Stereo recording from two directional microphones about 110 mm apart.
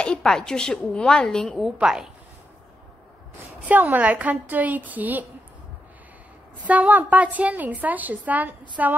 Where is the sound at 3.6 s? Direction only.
15° right (ahead or behind).